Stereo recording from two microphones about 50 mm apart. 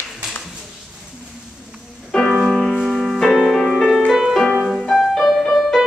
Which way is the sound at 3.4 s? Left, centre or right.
Centre.